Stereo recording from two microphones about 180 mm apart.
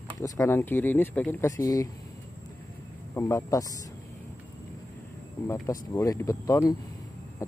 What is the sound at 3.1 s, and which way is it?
Speech, 15° left (ahead or behind).